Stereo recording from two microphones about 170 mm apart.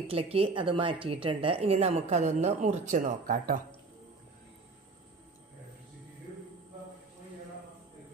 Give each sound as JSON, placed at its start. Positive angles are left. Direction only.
{"t": 0.0, "sound": "a woman's voice", "side_deg": -35}